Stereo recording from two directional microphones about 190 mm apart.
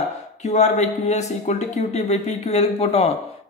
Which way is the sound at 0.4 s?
35° left (ahead or behind).